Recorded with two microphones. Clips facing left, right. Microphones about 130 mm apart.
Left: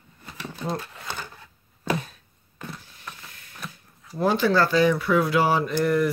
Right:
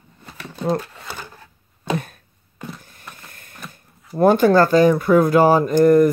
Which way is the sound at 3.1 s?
50° right (ahead or behind).